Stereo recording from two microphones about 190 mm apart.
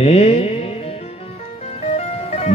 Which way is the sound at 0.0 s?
35° left (ahead or behind).